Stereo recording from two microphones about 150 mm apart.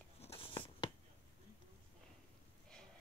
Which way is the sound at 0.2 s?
40° left (ahead or behind).